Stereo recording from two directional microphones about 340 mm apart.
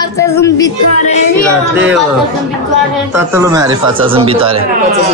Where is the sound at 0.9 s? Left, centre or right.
Centre.